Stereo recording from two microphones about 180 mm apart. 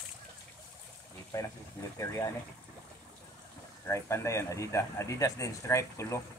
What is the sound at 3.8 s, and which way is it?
Speech, 15° left (ahead or behind).